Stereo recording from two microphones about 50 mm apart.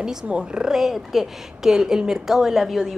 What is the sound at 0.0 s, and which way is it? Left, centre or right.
A woman's voice, centre.